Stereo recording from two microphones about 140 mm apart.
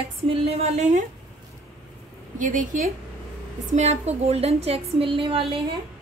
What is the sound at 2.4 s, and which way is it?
Speech, 70° right (ahead or behind).